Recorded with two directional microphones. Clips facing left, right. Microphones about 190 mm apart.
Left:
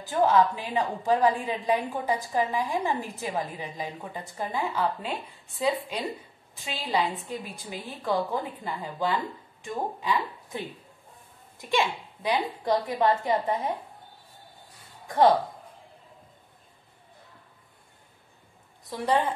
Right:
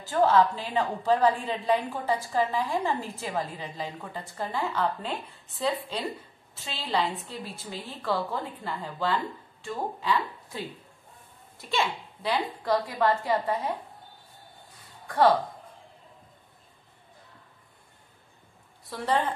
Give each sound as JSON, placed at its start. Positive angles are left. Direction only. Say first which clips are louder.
{"t": 0.0, "sound": "a woman's voice", "louder": "even", "side_deg": 15}
{"t": 6.5, "sound": "a woman's voice", "louder": "left 1 dB", "side_deg": 15}
{"t": 18.9, "sound": "a woman's voice", "louder": "left 2 dB", "side_deg": 15}